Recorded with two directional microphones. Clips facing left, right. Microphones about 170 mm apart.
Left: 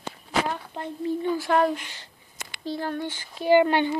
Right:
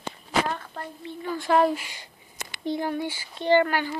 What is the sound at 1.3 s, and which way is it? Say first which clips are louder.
Speech: right 4 dB; centre (ahead or behind).